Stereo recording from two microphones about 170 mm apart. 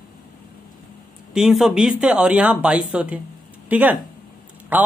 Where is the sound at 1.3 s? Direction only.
Centre (ahead or behind).